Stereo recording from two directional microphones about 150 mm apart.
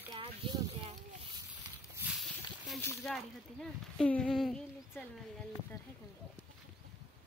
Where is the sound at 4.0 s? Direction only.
5° left (ahead or behind).